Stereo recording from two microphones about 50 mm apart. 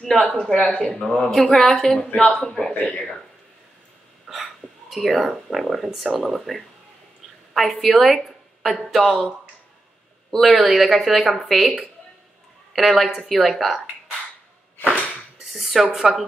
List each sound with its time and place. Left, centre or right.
0.0 s speech: centre
0.7 s speech: centre
2.4 s speech: centre
2.7 s speech: left
4.3 s speech: centre
10.3 s speech: centre
15.4 s speech: centre